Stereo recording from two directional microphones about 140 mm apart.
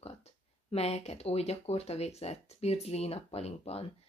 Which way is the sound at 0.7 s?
50° left (ahead or behind).